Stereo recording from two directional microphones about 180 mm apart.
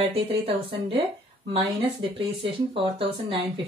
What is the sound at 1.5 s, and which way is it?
A woman's voice, 30° right (ahead or behind).